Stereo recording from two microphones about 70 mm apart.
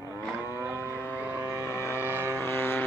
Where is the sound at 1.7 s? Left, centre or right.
Left.